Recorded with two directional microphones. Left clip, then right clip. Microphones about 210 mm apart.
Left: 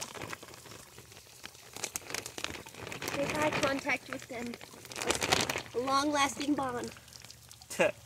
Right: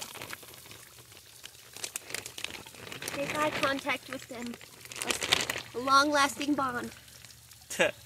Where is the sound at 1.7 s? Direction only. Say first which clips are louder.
Even; 50° left (ahead or behind).